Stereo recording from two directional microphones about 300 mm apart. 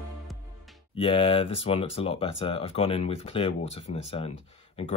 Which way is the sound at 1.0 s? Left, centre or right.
Centre.